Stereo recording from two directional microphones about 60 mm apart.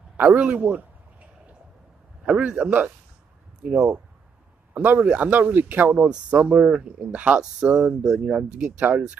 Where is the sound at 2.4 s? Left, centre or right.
Centre.